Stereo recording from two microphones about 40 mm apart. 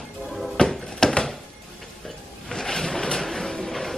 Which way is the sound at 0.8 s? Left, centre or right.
Centre.